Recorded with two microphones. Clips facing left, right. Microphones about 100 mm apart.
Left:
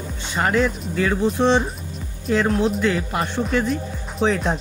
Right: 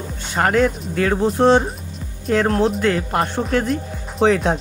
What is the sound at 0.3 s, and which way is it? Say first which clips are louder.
Speech: right 3 dB; 55° right (ahead or behind).